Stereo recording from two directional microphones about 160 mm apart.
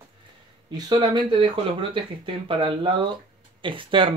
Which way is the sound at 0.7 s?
25° right (ahead or behind).